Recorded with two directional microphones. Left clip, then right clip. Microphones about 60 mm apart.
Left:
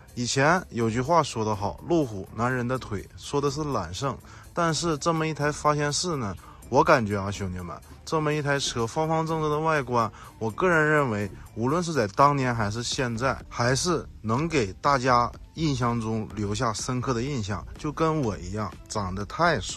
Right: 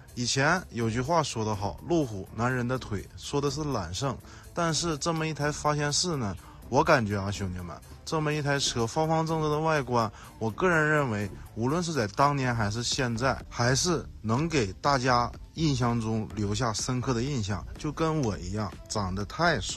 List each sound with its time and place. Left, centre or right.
0.1 s speech: right
7.4 s speech: right
15.5 s speech: right